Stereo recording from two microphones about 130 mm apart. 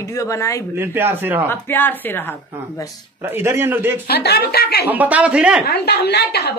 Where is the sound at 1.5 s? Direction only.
15° left (ahead or behind).